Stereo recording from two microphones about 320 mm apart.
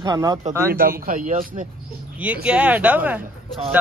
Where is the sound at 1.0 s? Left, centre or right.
Right.